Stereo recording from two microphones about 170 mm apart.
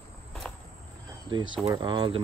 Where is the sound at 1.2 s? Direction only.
30° right (ahead or behind).